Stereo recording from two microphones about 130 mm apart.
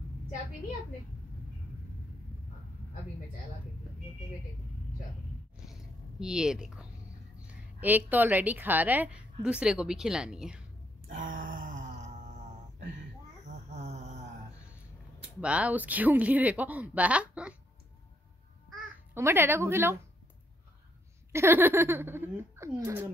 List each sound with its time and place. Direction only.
5.7 s biting: 5° right (ahead or behind)
7.8 s a woman's voice: 15° right (ahead or behind)
11.1 s a sound: 90° right
13.5 s a sound: 60° right (ahead or behind)
15.4 s a woman's voice: 10° right (ahead or behind)
19.1 s a woman's voice: 20° right (ahead or behind)
21.3 s a woman's voice: 20° right (ahead or behind)